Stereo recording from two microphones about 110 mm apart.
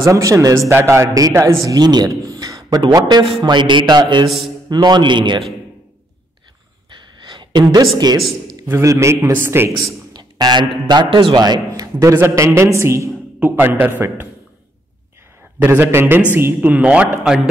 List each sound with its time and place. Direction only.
0.0 s a man's voice: 30° right (ahead or behind); by 5.4 s 45° right (ahead or behind)
7.2 s a sound: 40° right (ahead or behind)
8.6 s a man's voice: 20° right (ahead or behind)
10.1 s a man's voice: 40° right (ahead or behind); by 14.2 s 20° right (ahead or behind)
15.6 s a man's voice: 15° right (ahead or behind)